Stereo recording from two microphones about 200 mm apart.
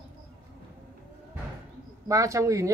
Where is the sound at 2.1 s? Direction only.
15° right (ahead or behind).